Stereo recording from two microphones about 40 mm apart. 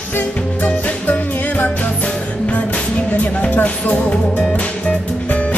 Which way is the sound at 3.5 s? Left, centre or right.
Left.